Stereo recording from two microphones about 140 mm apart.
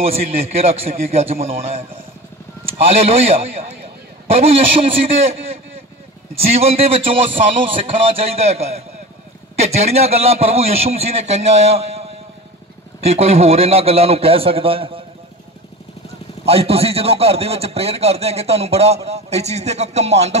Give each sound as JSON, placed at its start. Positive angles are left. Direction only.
{"t": 0.0, "sound": "a man's voice", "side_deg": -45}
{"t": 2.8, "sound": "a man's voice", "side_deg": -40}
{"t": 6.5, "sound": "a man's voice", "side_deg": -45}
{"t": 16.4, "sound": "a man's voice", "side_deg": -45}